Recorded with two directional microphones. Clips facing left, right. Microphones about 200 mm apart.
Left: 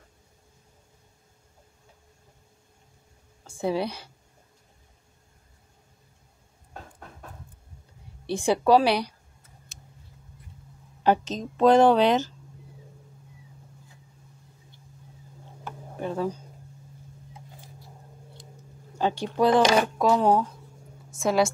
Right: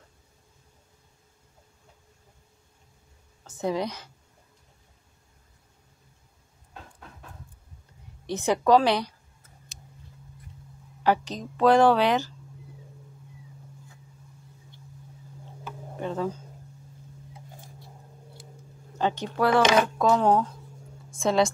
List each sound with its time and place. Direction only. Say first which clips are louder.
3.4 s speech: left 1 dB; 10° left (ahead or behind)
8.3 s speech: left 1 dB; 10° left (ahead or behind)
11.1 s a woman's voice: left 2 dB; 20° left (ahead or behind)
16.0 s a sound: left 1 dB; 10° left (ahead or behind)
18.9 s a woman's voice: left 2 dB; 10° left (ahead or behind)